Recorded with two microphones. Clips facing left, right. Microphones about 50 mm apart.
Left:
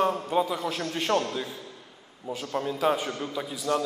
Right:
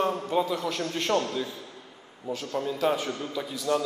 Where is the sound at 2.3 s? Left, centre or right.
Centre.